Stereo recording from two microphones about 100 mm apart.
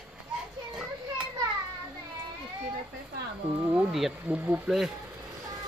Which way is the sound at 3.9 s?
Centre (ahead or behind).